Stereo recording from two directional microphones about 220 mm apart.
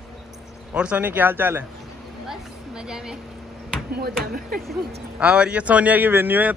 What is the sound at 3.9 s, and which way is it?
Speech, 45° right (ahead or behind).